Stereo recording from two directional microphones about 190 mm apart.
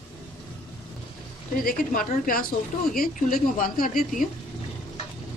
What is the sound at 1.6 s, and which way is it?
A woman's voice, 45° left (ahead or behind).